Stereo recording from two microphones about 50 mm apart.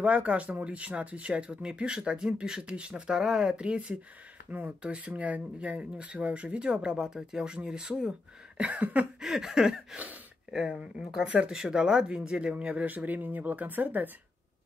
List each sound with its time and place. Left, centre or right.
0.0 s speech: right
4.5 s speech: right
9.2 s a sound: centre
9.9 s speech: right
10.5 s speech: centre; by 14.1 s right